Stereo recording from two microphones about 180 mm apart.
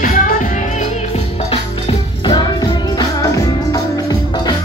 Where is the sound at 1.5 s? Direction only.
30° left (ahead or behind).